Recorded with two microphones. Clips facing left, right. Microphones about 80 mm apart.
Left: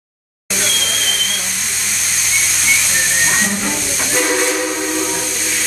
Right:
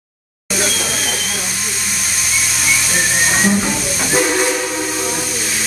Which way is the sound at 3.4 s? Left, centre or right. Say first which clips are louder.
Right 4 dB; centre.